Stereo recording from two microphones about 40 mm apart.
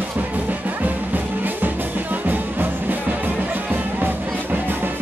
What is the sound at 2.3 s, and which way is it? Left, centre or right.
Music, right.